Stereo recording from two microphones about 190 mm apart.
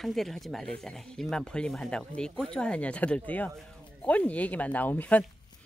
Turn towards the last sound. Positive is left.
turn(degrees=10)  # may be behind; listen again after turning